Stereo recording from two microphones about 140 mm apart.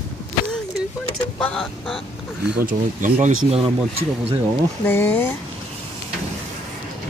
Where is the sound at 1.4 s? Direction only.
5° left (ahead or behind).